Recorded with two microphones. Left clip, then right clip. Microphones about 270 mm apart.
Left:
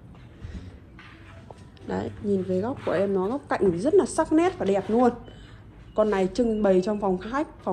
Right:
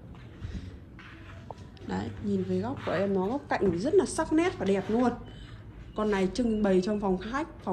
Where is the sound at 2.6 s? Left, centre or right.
Left.